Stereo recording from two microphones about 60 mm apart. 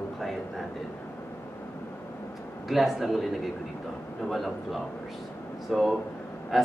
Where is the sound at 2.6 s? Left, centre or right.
Centre.